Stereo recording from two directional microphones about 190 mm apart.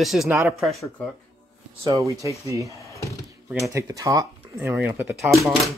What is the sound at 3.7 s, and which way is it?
Speech, 15° right (ahead or behind).